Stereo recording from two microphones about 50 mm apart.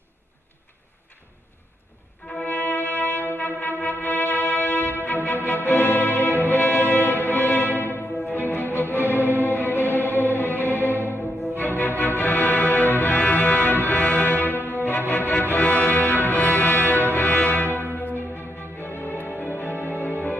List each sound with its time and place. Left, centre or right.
2.4 s music: left